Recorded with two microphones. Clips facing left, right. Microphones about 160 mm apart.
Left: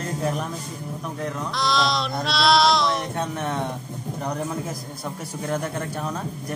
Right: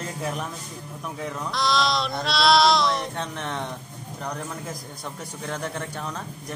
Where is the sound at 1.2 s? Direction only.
Centre (ahead or behind).